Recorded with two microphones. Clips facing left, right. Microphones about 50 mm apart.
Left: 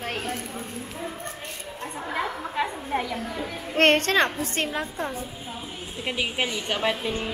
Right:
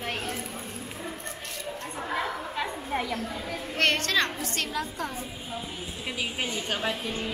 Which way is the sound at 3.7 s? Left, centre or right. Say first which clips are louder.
Left 6 dB; left.